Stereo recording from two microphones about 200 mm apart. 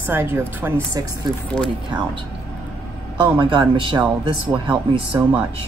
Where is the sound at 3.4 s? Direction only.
25° right (ahead or behind).